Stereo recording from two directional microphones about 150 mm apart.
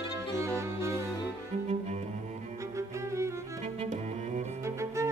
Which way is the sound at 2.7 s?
20° right (ahead or behind).